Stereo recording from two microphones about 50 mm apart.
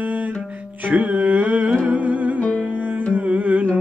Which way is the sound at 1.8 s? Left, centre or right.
Right.